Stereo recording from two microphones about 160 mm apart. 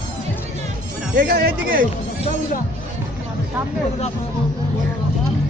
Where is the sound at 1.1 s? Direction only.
65° right (ahead or behind).